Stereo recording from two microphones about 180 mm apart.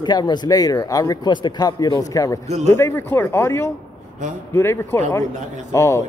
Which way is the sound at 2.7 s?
15° left (ahead or behind).